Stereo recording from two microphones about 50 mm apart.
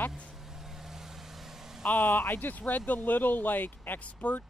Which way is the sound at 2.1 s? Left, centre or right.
Left.